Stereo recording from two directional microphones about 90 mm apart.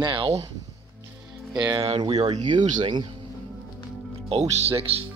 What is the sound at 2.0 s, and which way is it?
Speech, 55° right (ahead or behind).